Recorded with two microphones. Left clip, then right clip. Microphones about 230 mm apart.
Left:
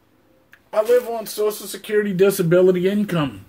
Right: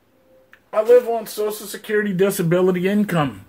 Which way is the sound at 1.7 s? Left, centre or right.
Centre.